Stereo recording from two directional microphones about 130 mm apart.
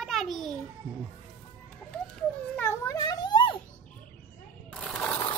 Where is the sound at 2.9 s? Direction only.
30° left (ahead or behind).